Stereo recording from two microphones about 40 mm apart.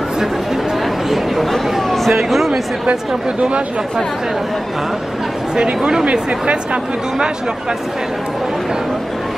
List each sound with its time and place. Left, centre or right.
1.1 s chatter: centre
1.8 s a sound: centre
2.1 s speech: centre
3.3 s speech: right
5.8 s speech: centre
6.1 s speech: right